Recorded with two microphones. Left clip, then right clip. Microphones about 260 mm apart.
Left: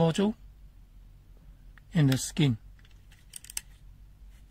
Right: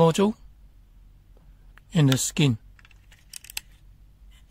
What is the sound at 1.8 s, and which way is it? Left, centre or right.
Speech, right.